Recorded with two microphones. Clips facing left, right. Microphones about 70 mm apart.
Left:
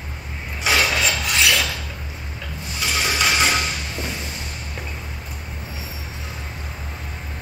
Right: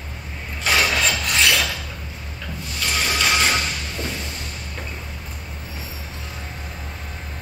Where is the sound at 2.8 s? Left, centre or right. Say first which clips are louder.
Even; centre.